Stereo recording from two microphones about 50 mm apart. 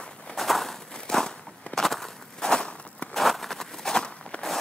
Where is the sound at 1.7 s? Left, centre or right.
Centre.